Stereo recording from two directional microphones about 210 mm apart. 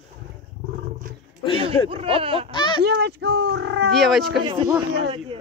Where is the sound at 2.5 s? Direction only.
20° left (ahead or behind).